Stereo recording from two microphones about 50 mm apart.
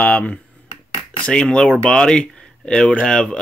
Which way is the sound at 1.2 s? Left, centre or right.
Centre.